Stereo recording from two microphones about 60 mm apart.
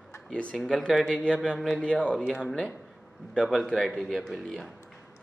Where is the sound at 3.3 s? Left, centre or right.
Centre.